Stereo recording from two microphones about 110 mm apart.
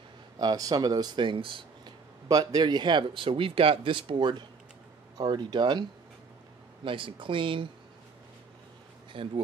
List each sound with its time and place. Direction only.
0.4 s speech: 35° right (ahead or behind)
2.2 s speech: 35° right (ahead or behind)
9.1 s speech: 55° right (ahead or behind)